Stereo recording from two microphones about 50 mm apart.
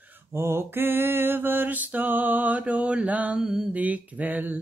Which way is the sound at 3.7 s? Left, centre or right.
Right.